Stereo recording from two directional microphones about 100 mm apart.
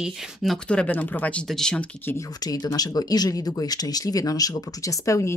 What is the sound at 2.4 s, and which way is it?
Speech, 40° left (ahead or behind).